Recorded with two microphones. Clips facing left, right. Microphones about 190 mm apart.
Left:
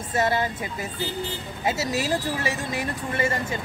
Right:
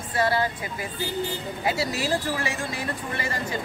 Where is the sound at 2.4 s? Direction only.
20° left (ahead or behind).